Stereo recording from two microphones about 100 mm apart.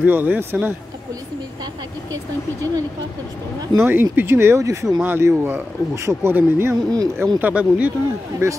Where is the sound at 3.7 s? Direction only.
20° right (ahead or behind).